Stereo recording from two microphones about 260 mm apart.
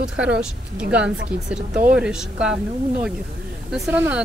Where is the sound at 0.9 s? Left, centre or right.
Centre.